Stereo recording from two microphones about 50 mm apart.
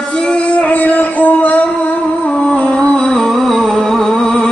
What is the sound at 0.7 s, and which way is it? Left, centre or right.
Female singing, left.